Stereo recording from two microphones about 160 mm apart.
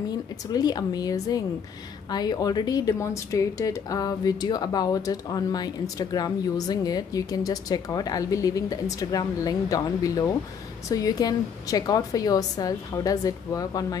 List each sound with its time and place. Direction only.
0.5 s speech: 25° left (ahead or behind)